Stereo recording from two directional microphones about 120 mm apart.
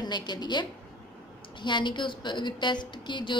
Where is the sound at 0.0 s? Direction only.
35° left (ahead or behind).